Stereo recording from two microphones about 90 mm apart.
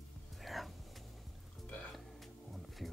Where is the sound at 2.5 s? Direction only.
Centre (ahead or behind).